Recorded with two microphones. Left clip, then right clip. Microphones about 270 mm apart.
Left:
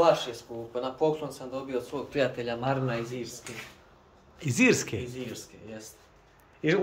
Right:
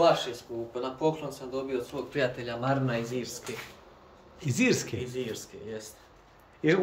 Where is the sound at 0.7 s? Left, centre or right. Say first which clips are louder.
Left 2 dB; centre.